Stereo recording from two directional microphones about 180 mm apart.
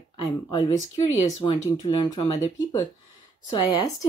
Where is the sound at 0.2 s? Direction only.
20° left (ahead or behind).